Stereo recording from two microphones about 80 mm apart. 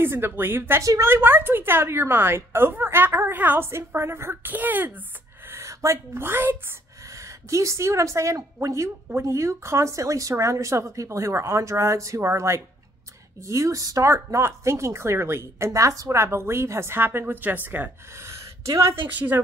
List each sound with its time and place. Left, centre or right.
0.0 s a woman's voice: right
5.5 s speech: right
7.4 s speech: right
18.3 s a sound: right
19.0 s a woman's voice: right